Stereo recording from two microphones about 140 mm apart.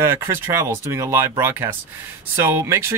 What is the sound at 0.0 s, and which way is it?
Speech, 20° right (ahead or behind).